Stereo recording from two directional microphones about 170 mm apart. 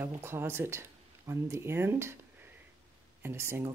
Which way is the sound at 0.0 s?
15° right (ahead or behind).